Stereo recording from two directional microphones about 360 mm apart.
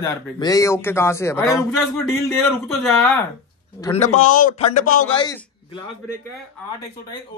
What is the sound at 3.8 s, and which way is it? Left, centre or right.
A man's voice, centre.